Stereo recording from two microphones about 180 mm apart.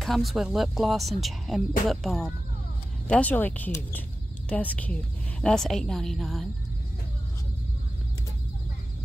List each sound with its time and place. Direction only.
0.0 s a woman's voice: centre (ahead or behind)